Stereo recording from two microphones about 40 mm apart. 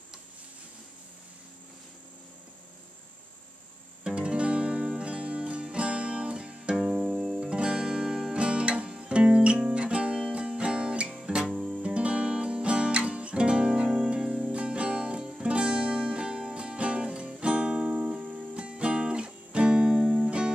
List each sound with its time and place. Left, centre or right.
4.0 s music: right
7.0 s music: centre
7.3 s music: right
11.1 s guitar: centre
11.8 s music: right
14.5 s music: right; by 20.2 s centre
20.2 s music: right